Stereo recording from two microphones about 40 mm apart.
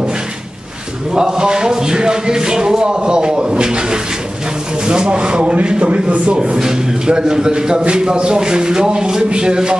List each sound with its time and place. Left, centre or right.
1.1 s speech: centre